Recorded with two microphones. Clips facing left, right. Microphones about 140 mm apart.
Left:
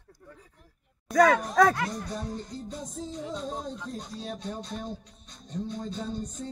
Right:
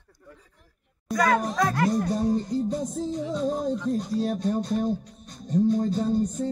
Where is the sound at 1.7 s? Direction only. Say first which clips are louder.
Right 9 dB; 55° right (ahead or behind).